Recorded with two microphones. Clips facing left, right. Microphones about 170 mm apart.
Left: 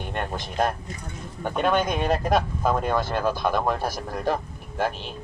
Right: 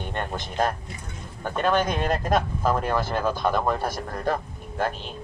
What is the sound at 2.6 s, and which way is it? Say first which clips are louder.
Speech: left 1 dB; 5° right (ahead or behind).